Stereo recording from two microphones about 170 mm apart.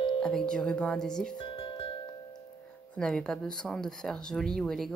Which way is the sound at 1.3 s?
30° left (ahead or behind).